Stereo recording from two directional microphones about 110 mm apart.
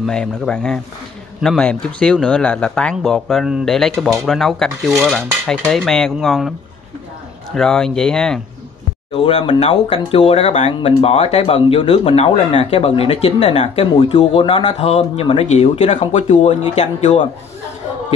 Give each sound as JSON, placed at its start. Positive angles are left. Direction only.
{"t": 0.0, "sound": "speech", "side_deg": 5}
{"t": 7.5, "sound": "speech", "side_deg": 5}
{"t": 9.1, "sound": "speech", "side_deg": 55}
{"t": 9.6, "sound": "speech", "side_deg": 65}
{"t": 10.7, "sound": "speech", "side_deg": 60}